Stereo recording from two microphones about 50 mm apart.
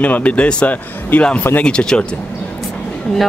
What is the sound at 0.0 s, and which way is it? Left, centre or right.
Speech, left.